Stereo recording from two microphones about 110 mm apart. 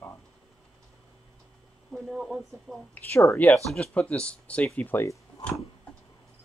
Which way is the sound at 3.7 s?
10° left (ahead or behind).